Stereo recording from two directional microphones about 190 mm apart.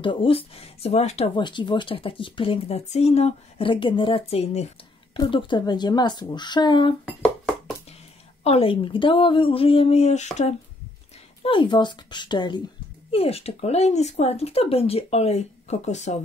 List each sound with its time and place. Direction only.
0.0 s speech: 25° left (ahead or behind)
7.1 s a sound: 5° left (ahead or behind)
8.5 s speech: 30° left (ahead or behind)
11.4 s speech: 25° left (ahead or behind)